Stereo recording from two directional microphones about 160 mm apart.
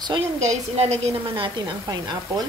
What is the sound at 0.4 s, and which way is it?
A woman's voice, 45° right (ahead or behind).